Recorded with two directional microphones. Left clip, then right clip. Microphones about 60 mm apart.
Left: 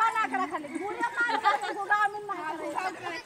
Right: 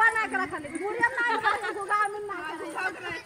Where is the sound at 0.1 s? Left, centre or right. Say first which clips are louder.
Even; left.